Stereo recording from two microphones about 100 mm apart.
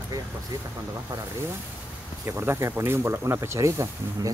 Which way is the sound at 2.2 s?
25° right (ahead or behind).